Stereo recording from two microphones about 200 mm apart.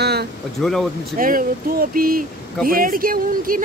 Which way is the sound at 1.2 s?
45° right (ahead or behind).